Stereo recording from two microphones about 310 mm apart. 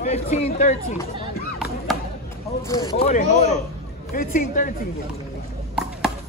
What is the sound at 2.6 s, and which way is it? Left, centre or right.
Speech, centre.